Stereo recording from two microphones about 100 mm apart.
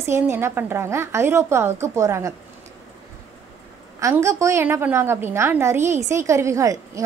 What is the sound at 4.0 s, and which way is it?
A woman's voice, 30° right (ahead or behind).